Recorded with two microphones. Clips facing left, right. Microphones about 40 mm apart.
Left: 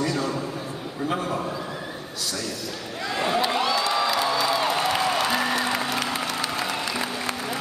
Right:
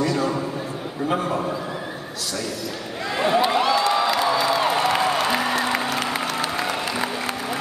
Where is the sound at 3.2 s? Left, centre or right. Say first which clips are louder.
Right 4 dB; centre.